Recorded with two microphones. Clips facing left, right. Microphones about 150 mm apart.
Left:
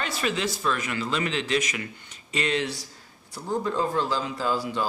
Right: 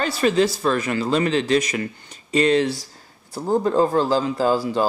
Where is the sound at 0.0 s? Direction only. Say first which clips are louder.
Right 9 dB; 35° right (ahead or behind).